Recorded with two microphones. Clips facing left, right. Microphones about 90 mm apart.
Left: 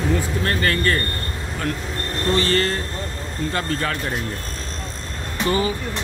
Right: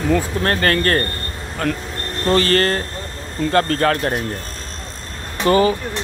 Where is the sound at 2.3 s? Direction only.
60° right (ahead or behind).